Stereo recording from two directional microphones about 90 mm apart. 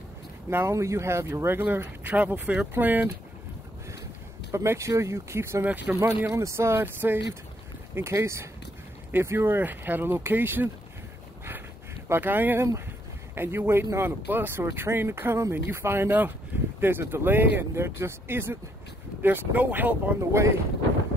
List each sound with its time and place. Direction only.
0.5 s speech: 25° right (ahead or behind)
4.5 s speech: 35° right (ahead or behind)
5.7 s speech: 20° right (ahead or behind)
6.2 s speech: 30° right (ahead or behind)
12.1 s speech: 20° right (ahead or behind)
20.2 s speech: 30° right (ahead or behind)